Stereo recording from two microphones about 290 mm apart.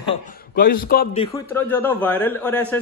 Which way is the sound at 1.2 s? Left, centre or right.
Centre.